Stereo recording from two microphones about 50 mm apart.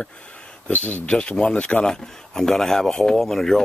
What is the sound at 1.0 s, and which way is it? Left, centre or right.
Speech, centre.